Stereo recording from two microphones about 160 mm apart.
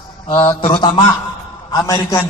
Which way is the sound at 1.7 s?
20° left (ahead or behind).